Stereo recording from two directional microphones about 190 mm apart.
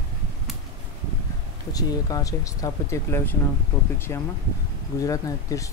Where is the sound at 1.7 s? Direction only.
20° left (ahead or behind).